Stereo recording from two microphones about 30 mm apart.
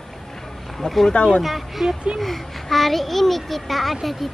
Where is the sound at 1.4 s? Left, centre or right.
Centre.